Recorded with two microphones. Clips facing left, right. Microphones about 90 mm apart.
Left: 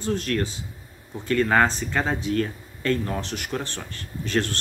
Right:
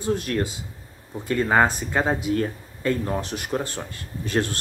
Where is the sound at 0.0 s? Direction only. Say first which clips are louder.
Right 1 dB; 15° right (ahead or behind).